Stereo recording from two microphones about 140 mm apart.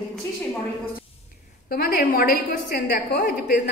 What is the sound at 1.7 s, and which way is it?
A woman's voice, 90° left.